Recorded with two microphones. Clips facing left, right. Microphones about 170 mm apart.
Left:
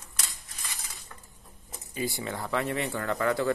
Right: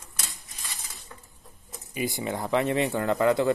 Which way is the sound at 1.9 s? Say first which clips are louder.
Right 3 dB; 20° right (ahead or behind).